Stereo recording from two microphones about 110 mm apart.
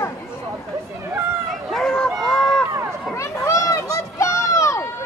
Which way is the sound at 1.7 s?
5° left (ahead or behind).